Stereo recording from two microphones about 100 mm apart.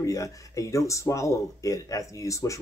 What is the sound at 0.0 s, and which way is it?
Speech, 35° left (ahead or behind).